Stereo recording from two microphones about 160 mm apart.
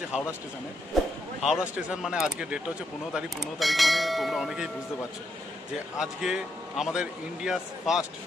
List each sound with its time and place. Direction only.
1.4 s speech: 5° right (ahead or behind)
5.9 s speech: centre (ahead or behind)